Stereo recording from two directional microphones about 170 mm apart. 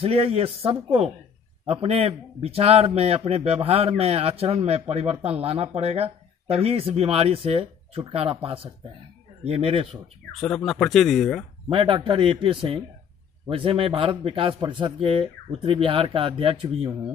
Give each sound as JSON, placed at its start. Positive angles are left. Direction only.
{"t": 0.0, "sound": "speech", "side_deg": -35}
{"t": 10.4, "sound": "speech", "side_deg": 5}
{"t": 11.7, "sound": "speech", "side_deg": -30}